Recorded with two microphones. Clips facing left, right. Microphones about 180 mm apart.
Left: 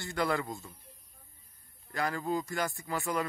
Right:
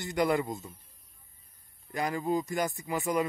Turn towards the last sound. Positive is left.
turn(degrees=-20)  # may be behind; listen again after turning